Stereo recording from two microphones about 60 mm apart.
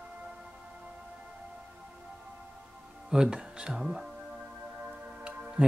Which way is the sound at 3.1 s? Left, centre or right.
Centre.